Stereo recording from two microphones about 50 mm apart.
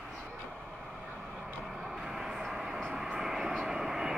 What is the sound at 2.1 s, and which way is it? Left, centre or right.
Vehicle, centre.